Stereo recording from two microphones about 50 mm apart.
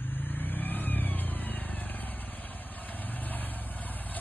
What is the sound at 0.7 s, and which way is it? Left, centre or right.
Vehicle, left.